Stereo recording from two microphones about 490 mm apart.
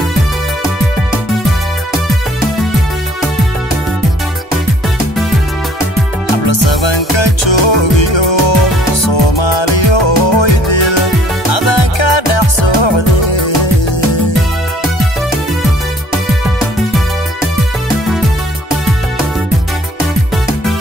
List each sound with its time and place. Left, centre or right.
6.3 s music: left